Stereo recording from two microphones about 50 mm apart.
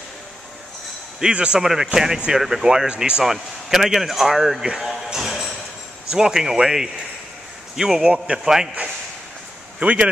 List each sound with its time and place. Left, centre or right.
1.3 s a man's voice: right
1.6 s speech: centre
4.7 s a sound: centre
6.0 s speech: centre
9.8 s speech: right